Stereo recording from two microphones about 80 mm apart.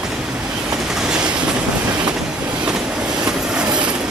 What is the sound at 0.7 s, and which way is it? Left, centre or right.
Train, centre.